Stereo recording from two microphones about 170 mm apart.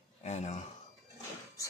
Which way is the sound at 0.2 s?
40° left (ahead or behind).